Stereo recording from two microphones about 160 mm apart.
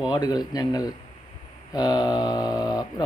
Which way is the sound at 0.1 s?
25° left (ahead or behind).